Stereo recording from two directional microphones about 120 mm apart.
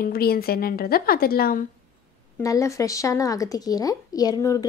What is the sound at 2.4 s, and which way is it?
A woman's voice, 25° left (ahead or behind).